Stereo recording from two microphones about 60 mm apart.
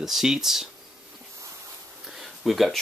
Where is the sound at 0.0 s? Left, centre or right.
Centre.